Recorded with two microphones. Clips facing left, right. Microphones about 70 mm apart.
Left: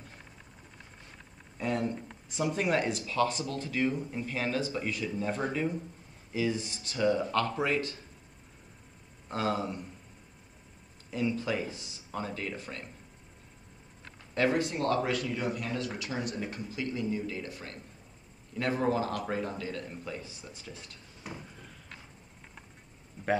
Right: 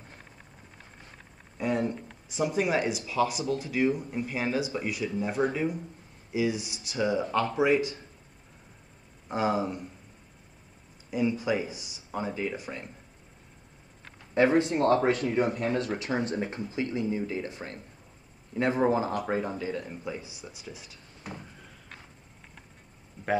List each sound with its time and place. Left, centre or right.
1.6 s speech: centre
9.3 s speech: centre
11.1 s speech: centre
14.3 s speech: right; by 21.7 s centre